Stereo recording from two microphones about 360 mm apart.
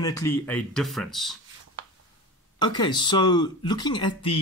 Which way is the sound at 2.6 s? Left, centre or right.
Centre.